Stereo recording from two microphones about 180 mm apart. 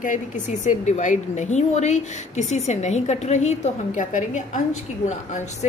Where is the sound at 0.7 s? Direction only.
45° left (ahead or behind).